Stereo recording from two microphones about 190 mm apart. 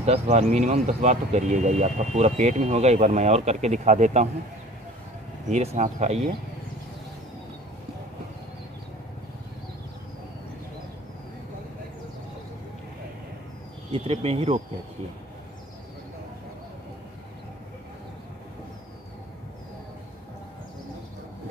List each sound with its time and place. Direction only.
0.0 s speech: 35° right (ahead or behind)
5.5 s speech: 35° right (ahead or behind)
13.9 s speech: 30° right (ahead or behind)